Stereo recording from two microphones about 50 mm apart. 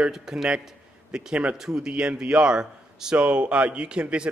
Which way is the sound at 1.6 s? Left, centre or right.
Centre.